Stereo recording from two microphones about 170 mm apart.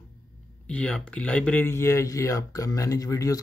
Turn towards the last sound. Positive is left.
turn(degrees=20)  # may be behind; listen again after turning